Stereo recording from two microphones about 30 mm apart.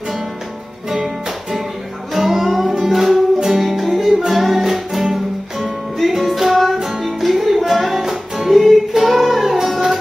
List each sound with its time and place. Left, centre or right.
0.8 s music: centre
7.1 s music: centre
7.3 s music: centre